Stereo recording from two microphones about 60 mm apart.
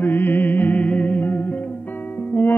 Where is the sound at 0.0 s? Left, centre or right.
Left.